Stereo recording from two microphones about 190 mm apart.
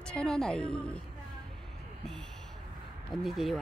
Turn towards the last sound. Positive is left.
turn(degrees=0)  # may be behind; listen again after turning